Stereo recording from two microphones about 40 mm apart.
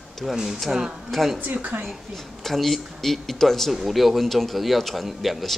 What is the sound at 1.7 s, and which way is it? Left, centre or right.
Speech, right.